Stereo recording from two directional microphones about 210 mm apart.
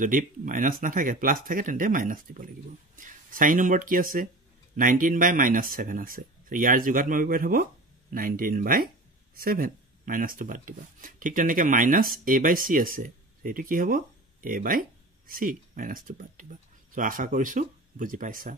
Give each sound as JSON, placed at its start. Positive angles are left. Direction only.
{"t": 0.0, "sound": "speech", "side_deg": -40}